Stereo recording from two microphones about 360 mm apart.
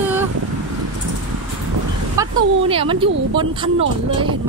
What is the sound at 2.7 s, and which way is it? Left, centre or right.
A woman's voice, centre.